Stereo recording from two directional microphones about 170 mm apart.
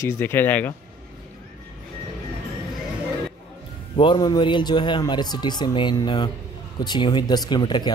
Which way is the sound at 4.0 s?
25° left (ahead or behind).